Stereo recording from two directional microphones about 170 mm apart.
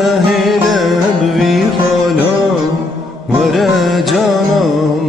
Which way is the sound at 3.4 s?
Centre (ahead or behind).